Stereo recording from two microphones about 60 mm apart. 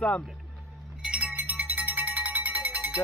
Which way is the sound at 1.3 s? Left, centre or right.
Right.